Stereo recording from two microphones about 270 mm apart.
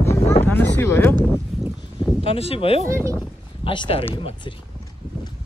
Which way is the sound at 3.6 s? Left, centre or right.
Centre.